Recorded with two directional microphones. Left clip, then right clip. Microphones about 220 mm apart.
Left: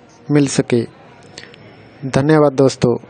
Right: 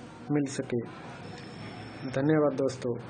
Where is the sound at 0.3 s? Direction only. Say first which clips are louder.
Left 15 dB; 45° left (ahead or behind).